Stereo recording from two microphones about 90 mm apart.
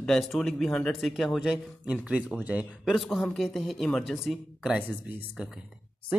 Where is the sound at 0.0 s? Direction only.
5° left (ahead or behind).